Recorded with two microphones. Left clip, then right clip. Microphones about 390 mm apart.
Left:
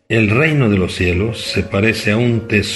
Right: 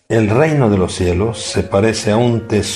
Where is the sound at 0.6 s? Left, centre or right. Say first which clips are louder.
Right 1 dB; centre.